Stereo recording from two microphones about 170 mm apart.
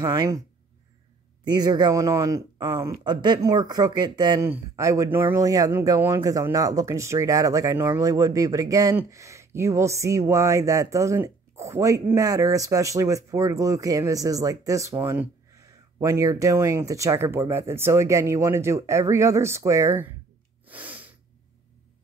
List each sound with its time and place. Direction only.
0.0 s speech: 20° right (ahead or behind)
1.4 s speech: 25° right (ahead or behind)
20.6 s snort: 10° right (ahead or behind)